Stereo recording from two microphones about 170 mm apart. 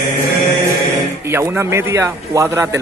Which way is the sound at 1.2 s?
15° right (ahead or behind).